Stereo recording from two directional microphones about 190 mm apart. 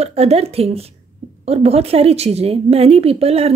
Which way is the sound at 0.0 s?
35° right (ahead or behind).